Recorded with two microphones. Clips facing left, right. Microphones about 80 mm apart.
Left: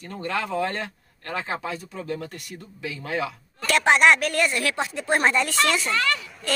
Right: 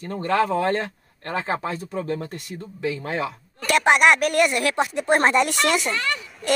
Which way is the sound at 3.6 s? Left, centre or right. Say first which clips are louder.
Right 1 dB; centre.